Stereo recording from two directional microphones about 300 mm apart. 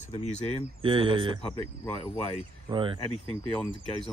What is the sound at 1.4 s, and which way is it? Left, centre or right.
Speech, centre.